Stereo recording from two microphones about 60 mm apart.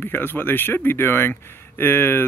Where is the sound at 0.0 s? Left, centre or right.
Left.